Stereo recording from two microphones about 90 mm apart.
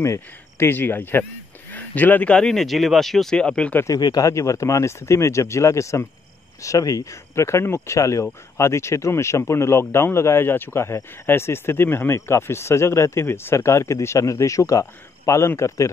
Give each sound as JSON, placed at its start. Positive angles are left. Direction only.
{"t": 0.0, "sound": "speech", "side_deg": 30}
{"t": 4.0, "sound": "speech", "side_deg": 45}